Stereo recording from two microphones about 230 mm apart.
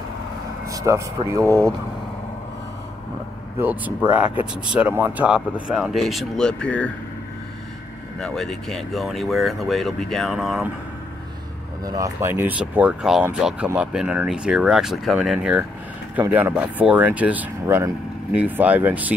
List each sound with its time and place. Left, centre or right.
0.7 s speech: centre
3.5 s speech: centre
8.2 s speech: centre
11.8 s speech: centre